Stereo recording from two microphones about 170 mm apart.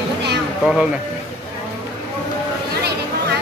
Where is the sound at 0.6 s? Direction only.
Centre (ahead or behind).